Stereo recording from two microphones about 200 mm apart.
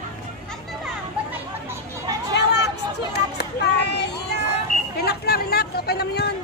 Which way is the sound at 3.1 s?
55° left (ahead or behind).